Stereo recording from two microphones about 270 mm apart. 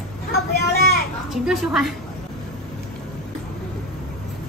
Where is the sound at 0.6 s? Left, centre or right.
Left.